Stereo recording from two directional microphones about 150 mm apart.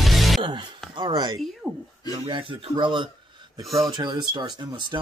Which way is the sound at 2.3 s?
35° right (ahead or behind).